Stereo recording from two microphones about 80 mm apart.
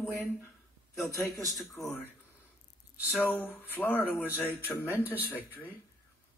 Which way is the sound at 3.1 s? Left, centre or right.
Left.